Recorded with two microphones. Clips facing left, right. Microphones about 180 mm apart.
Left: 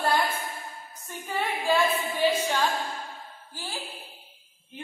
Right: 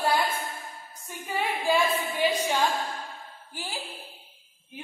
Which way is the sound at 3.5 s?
15° right (ahead or behind).